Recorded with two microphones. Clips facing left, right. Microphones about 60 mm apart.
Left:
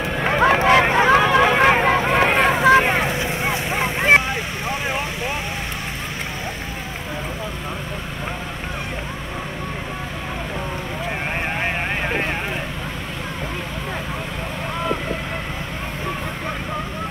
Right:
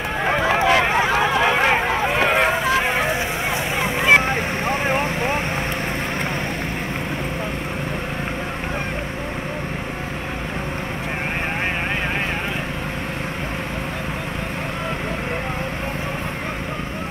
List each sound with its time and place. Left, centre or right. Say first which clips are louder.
0.4 s a sound: left 4 dB; left
1.9 s boat: left 2 dB; left
4.3 s vehicle: right 3 dB; right